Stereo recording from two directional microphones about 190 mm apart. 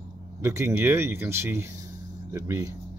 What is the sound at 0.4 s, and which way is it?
Speech, 15° right (ahead or behind).